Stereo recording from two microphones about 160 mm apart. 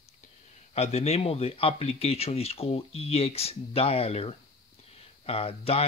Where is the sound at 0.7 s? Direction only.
40° left (ahead or behind).